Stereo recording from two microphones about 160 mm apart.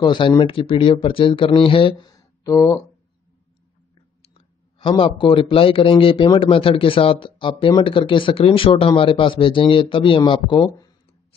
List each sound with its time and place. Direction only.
0.0 s speech: 25° left (ahead or behind)
4.2 s speech: 35° left (ahead or behind)